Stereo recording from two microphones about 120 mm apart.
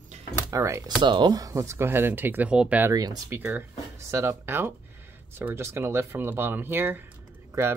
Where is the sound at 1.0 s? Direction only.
40° right (ahead or behind); by 2.9 s 10° right (ahead or behind).